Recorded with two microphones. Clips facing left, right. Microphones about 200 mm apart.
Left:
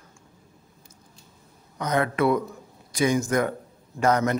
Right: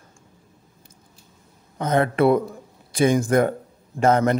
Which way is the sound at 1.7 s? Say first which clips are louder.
Right 4 dB; 25° right (ahead or behind).